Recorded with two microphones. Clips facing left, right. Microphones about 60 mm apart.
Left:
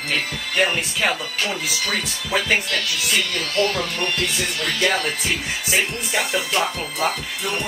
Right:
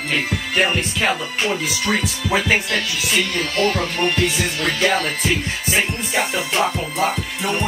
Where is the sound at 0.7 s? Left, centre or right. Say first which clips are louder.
Right 2 dB; centre.